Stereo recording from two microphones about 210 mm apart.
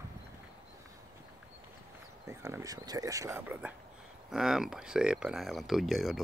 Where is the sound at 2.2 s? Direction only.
15° right (ahead or behind).